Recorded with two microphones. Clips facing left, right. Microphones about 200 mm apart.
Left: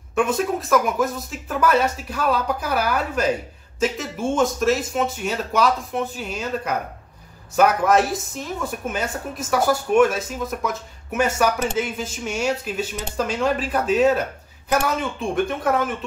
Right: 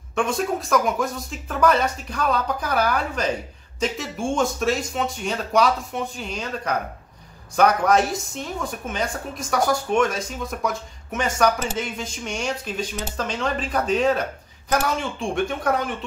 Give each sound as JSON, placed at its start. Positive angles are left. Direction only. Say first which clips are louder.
{"t": 0.1, "sound": "a woman's voice", "louder": "left 2 dB", "side_deg": 5}